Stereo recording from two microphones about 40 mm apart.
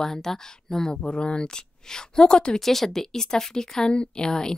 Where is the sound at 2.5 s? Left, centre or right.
Centre.